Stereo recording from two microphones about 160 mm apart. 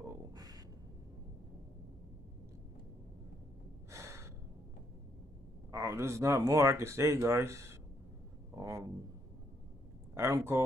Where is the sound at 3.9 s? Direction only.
15° right (ahead or behind).